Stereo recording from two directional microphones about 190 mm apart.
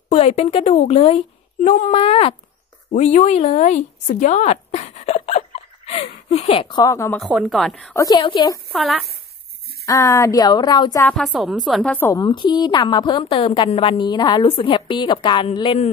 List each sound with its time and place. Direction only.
0.1 s a woman's voice: 35° left (ahead or behind)
5.9 s a sound: 35° left (ahead or behind); by 7.2 s 15° left (ahead or behind)
7.2 s a woman's voice: 5° right (ahead or behind)
7.9 s a woman's voice: 15° left (ahead or behind)
8.2 s a woman's voice: 25° left (ahead or behind)
8.7 s a woman's voice: centre (ahead or behind)
9.8 s a woman's voice: 15° left (ahead or behind)
11.1 s a woman's voice: centre (ahead or behind)
12.2 s a woman's voice: 25° left (ahead or behind)